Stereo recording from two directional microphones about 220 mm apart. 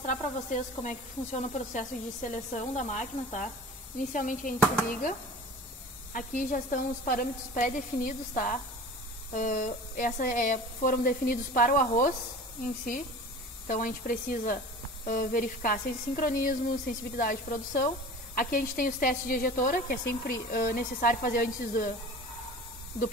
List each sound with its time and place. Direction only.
0.0 s speech: 35° left (ahead or behind)
6.1 s speech: 35° left (ahead or behind)
13.7 s speech: 40° left (ahead or behind)